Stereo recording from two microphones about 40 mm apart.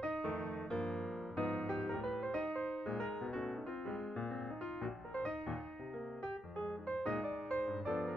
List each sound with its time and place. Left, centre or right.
0.0 s music: left
0.7 s music: centre
2.9 s music: centre
4.8 s music: left